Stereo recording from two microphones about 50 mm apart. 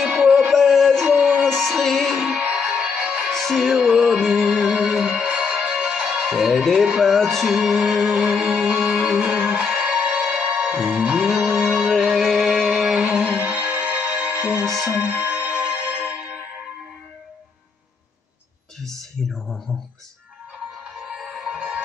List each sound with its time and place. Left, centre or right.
0.0 s music: centre
0.6 s music: centre
2.5 s music: centre
3.3 s music: centre
4.9 s music: centre
6.4 s music: centre
10.7 s music: centre
13.0 s music: centre
14.7 s music: centre
15.0 s music: right
19.2 s a sound: centre
21.0 s music: centre